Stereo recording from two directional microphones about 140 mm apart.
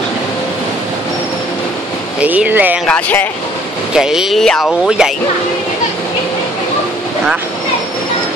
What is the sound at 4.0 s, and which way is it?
Speech, 5° right (ahead or behind).